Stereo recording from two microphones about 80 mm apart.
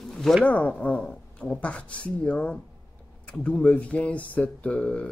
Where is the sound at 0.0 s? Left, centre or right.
Centre.